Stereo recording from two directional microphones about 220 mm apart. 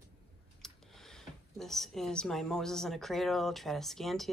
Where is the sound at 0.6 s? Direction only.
Centre (ahead or behind).